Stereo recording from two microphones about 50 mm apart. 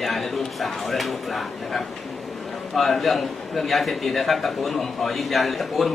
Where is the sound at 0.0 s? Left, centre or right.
Centre.